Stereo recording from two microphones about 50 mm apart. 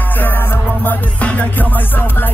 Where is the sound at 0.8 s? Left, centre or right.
Left.